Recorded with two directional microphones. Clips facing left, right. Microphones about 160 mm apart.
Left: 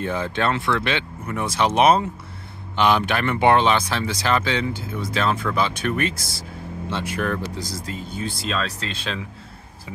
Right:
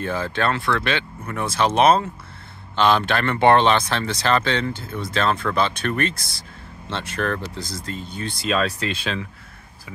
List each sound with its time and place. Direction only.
0.0 s speech: 20° left (ahead or behind)
8.8 s speech: 10° right (ahead or behind)